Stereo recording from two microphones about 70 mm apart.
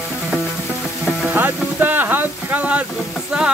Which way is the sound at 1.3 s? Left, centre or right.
Right.